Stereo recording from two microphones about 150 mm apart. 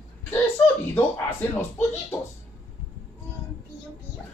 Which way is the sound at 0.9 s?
15° left (ahead or behind).